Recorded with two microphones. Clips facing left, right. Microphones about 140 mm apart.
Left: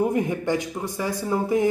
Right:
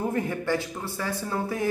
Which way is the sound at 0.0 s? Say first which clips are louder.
Left 5 dB; 15° left (ahead or behind).